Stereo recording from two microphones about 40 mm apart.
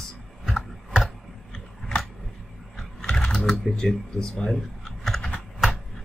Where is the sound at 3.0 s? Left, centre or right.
Centre.